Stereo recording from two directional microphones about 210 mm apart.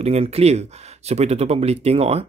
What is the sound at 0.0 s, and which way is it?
Speech, 30° right (ahead or behind).